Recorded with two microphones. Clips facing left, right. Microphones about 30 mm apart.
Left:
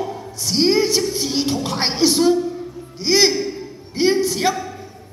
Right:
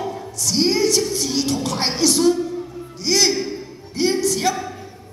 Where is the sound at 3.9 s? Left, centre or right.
Centre.